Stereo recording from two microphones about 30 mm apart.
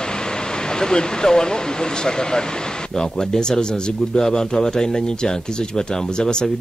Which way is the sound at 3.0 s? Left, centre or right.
Left.